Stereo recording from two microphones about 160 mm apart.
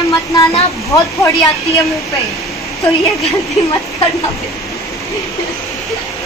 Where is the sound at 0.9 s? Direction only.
20° left (ahead or behind).